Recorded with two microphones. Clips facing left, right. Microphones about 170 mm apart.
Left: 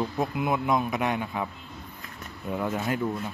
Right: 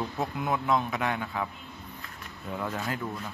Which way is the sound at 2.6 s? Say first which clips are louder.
Left 4 dB; 20° left (ahead or behind).